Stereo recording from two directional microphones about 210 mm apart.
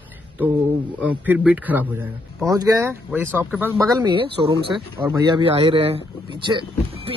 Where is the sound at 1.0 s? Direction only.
10° right (ahead or behind).